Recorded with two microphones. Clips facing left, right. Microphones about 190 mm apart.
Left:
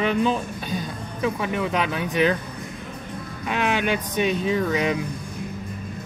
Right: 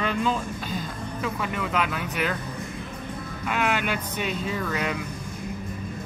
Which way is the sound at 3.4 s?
20° left (ahead or behind).